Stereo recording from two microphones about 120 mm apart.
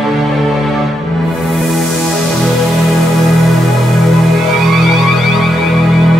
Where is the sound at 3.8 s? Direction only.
Centre (ahead or behind).